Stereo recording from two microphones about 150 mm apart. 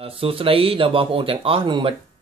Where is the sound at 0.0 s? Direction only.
40° right (ahead or behind).